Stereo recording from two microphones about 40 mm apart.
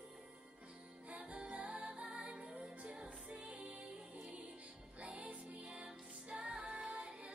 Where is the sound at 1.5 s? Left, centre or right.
Right.